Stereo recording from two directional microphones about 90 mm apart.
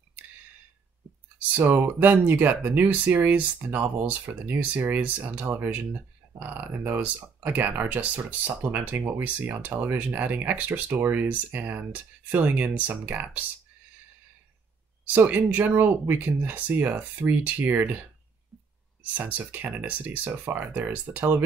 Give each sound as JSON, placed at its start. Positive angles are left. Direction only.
{"t": 1.5, "sound": "speech", "side_deg": -25}
{"t": 15.0, "sound": "speech", "side_deg": -20}
{"t": 19.1, "sound": "speech", "side_deg": -20}